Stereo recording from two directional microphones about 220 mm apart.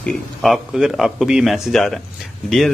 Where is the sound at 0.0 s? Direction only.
Centre (ahead or behind).